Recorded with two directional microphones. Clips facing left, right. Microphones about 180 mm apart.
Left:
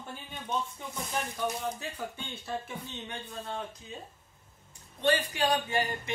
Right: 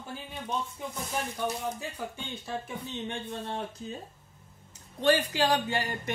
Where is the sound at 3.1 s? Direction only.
25° right (ahead or behind).